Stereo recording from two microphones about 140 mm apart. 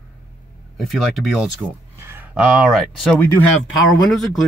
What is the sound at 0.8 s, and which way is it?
Speech, centre (ahead or behind).